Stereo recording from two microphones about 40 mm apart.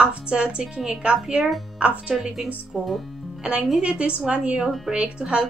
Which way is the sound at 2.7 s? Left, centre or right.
Centre.